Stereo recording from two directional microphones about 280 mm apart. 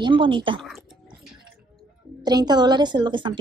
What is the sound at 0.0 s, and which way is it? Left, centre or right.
Speech, centre.